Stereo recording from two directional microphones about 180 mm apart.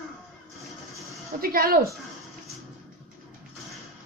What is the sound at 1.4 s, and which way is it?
Speech, 55° right (ahead or behind).